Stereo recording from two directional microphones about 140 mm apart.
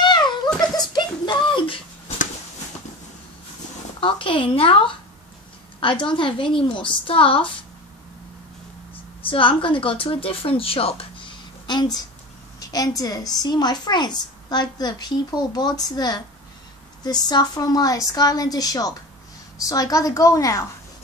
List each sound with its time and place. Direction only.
0.6 s a sound: 30° left (ahead or behind)
4.0 s speech: 40° left (ahead or behind)
9.2 s speech: 40° left (ahead or behind)
11.6 s a woman's voice: 30° left (ahead or behind)